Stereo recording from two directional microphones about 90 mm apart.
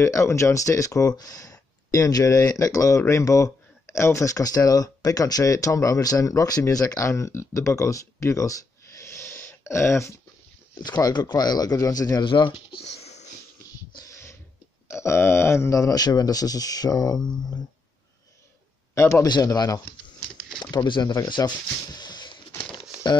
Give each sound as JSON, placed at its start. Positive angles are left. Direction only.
{"t": 0.0, "sound": "speech", "side_deg": 35}
{"t": 10.7, "sound": "speech", "side_deg": 50}
{"t": 12.3, "sound": "speech", "side_deg": 65}
{"t": 14.0, "sound": "a sound", "side_deg": 30}
{"t": 14.9, "sound": "speech", "side_deg": 30}
{"t": 18.9, "sound": "speech", "side_deg": 30}
{"t": 19.2, "sound": "speech", "side_deg": 50}
{"t": 20.7, "sound": "speech", "side_deg": 55}
{"t": 21.3, "sound": "a sound", "side_deg": 55}